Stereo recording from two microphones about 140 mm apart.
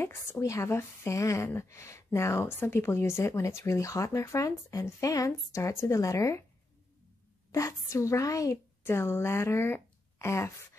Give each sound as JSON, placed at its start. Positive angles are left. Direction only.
{"t": 0.0, "sound": "speech", "side_deg": 20}
{"t": 7.5, "sound": "a woman's voice", "side_deg": 20}